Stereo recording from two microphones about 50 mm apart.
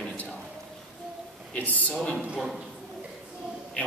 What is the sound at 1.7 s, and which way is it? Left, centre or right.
Speech, left.